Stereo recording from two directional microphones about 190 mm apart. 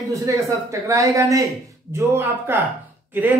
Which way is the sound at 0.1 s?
15° right (ahead or behind).